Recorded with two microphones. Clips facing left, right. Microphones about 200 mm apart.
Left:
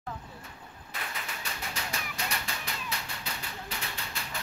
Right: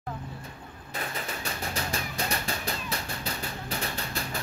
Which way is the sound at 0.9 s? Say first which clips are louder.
Right 5 dB; 40° right (ahead or behind).